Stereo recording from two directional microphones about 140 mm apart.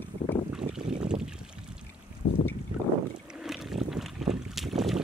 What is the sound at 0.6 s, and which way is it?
Boat, 30° right (ahead or behind).